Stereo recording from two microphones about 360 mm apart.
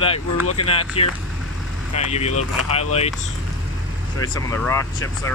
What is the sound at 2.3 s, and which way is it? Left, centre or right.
Speech, left.